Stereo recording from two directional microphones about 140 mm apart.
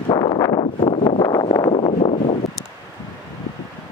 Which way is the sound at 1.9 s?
55° left (ahead or behind).